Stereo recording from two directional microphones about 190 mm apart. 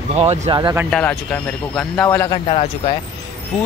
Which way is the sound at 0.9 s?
5° left (ahead or behind).